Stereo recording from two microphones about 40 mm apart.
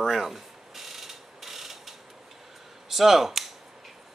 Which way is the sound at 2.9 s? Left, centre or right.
Centre.